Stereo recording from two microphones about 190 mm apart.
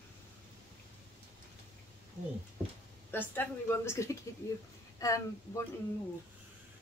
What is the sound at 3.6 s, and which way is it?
Speech, 15° left (ahead or behind).